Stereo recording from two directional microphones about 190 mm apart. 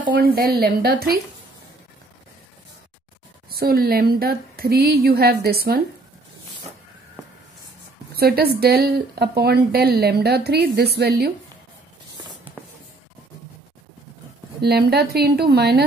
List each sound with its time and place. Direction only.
0.0 s speech: 50° right (ahead or behind)
3.4 s speech: 55° right (ahead or behind)
8.1 s speech: 55° right (ahead or behind)
14.6 s speech: 55° right (ahead or behind)